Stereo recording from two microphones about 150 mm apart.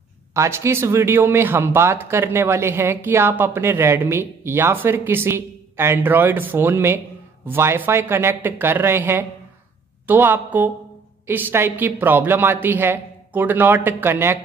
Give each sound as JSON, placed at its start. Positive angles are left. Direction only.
{"t": 0.3, "sound": "speech", "side_deg": -20}